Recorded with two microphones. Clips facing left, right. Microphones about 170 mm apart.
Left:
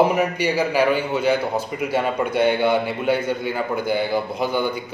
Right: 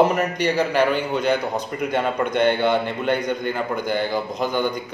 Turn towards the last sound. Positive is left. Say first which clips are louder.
# even
turn(degrees=10)  # may be behind; listen again after turning